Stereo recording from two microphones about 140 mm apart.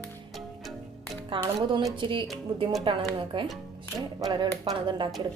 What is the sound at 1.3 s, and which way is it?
Speech, 35° right (ahead or behind).